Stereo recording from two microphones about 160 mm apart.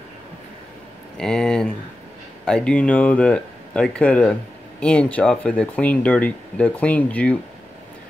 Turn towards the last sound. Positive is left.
turn(degrees=10)  # may be behind; listen again after turning